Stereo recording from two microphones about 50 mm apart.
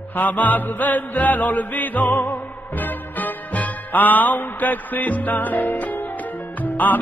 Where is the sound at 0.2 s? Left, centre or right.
Left.